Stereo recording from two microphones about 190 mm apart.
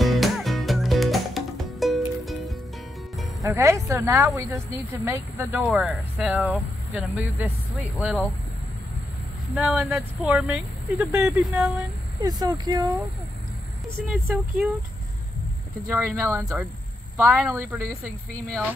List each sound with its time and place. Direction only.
0.0 s music: centre (ahead or behind)
3.4 s speech: 15° right (ahead or behind)
9.6 s speech: 10° right (ahead or behind)
12.2 s speech: 20° right (ahead or behind)
14.1 s speech: 5° right (ahead or behind)
15.9 s speech: 10° right (ahead or behind)